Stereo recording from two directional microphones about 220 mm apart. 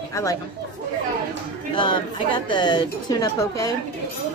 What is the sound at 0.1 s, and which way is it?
Speech, 15° left (ahead or behind).